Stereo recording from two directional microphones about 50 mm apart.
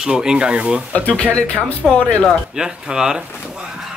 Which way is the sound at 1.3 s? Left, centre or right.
Left.